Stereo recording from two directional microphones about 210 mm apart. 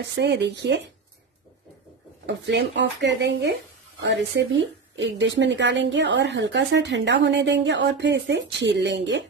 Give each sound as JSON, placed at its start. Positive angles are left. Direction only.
{"t": 0.0, "sound": "a woman's voice", "side_deg": -55}
{"t": 2.2, "sound": "a woman's voice", "side_deg": -55}